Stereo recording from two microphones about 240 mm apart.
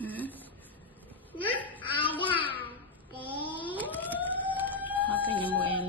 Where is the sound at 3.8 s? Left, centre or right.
Centre.